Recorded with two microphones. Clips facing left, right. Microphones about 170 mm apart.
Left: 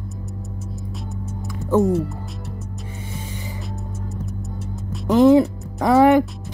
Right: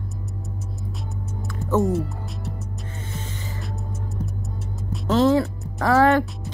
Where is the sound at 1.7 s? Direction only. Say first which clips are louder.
Left 4 dB; centre (ahead or behind).